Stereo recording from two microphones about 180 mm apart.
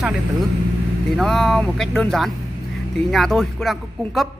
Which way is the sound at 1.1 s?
Centre (ahead or behind).